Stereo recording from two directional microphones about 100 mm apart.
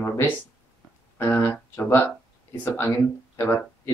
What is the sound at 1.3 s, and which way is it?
Speech, 20° left (ahead or behind).